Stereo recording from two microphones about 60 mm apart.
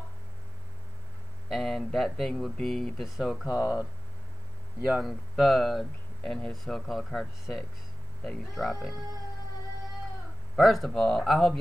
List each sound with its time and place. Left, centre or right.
1.5 s speech: centre
3.4 s speech: right
5.0 s speech: centre
10.5 s speech: centre